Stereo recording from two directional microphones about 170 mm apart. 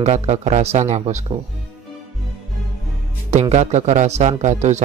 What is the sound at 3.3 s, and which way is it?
Speech, 40° right (ahead or behind).